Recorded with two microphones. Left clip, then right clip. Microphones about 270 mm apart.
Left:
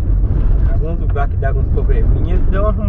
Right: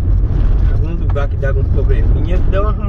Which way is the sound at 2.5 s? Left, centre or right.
Centre.